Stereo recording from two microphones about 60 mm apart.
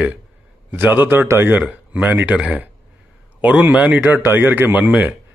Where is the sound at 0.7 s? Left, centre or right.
Right.